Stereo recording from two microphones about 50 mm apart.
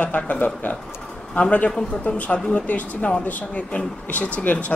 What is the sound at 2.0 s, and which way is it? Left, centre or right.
A woman's voice, left.